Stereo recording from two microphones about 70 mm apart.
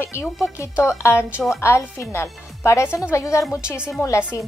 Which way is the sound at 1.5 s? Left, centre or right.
Left.